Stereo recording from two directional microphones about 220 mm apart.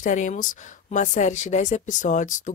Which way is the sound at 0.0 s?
35° left (ahead or behind).